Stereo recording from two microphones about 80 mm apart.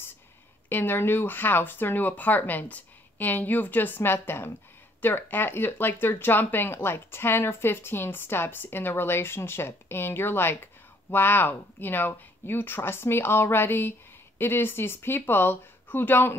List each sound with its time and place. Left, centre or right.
0.7 s speech: left